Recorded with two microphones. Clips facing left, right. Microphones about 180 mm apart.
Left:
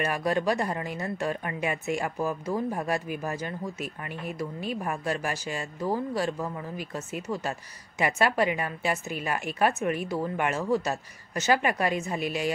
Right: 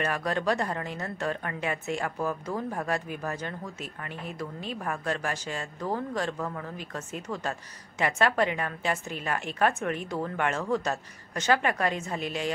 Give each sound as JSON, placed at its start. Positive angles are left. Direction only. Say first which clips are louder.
{"t": 0.0, "sound": "speech", "louder": "left 2 dB", "side_deg": 10}